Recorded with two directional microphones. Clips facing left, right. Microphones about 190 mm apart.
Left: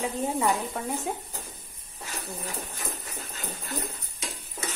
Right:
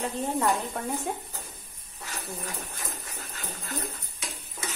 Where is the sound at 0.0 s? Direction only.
5° left (ahead or behind).